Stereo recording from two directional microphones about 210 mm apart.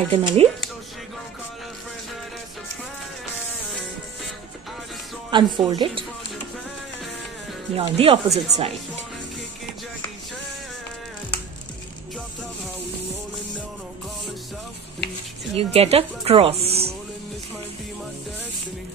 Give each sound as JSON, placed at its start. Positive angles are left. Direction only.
{"t": 0.1, "sound": "speech", "side_deg": -25}
{"t": 5.3, "sound": "speech", "side_deg": -20}
{"t": 7.7, "sound": "speech", "side_deg": -25}
{"t": 15.5, "sound": "speech", "side_deg": -30}